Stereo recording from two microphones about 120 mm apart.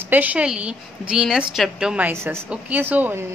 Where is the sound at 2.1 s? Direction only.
20° right (ahead or behind).